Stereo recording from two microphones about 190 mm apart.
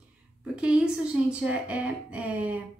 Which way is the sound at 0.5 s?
5° right (ahead or behind).